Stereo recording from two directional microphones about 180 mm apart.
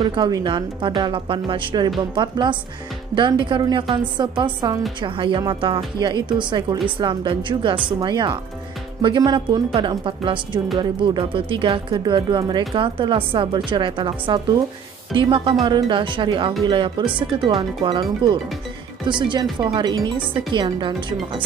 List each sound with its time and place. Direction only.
0.0 s speech: 25° right (ahead or behind)